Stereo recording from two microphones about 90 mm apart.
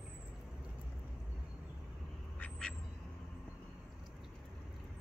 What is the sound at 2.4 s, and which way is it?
Quack, 10° left (ahead or behind).